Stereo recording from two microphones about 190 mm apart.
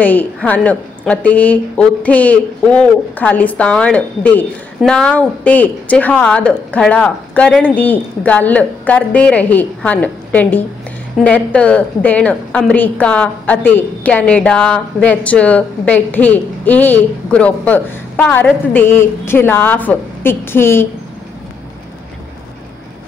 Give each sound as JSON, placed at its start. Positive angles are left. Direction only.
{"t": 0.0, "sound": "a woman's voice", "side_deg": 10}